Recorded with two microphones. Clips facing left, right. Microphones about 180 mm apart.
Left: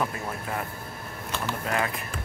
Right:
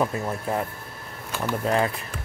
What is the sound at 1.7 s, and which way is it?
Speech, 30° right (ahead or behind).